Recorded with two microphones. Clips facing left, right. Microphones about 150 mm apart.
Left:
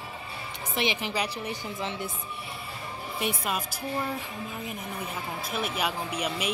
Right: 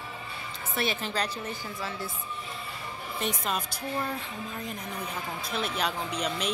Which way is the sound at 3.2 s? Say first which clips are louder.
Left 1 dB; 5° left (ahead or behind).